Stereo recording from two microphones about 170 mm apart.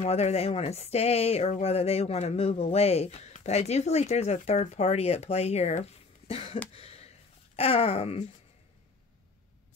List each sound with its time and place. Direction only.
0.0 s speech: 40° left (ahead or behind)
6.7 s a sound: 35° left (ahead or behind)
7.5 s speech: 35° left (ahead or behind)